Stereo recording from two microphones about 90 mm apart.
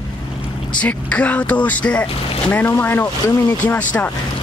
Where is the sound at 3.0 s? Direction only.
40° left (ahead or behind).